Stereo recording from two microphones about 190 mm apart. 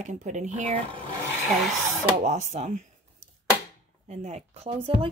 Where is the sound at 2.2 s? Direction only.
40° right (ahead or behind).